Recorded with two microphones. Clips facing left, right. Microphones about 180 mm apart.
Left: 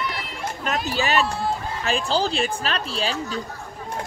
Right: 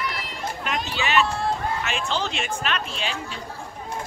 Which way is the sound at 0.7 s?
40° left (ahead or behind).